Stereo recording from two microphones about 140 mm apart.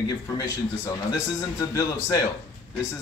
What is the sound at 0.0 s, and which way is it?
A man's voice, 25° left (ahead or behind).